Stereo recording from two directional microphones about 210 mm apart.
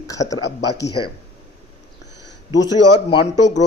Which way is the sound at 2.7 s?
90° left.